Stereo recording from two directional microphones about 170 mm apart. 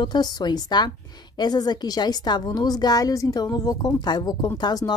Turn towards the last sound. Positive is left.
turn(degrees=25)  # may be behind; listen again after turning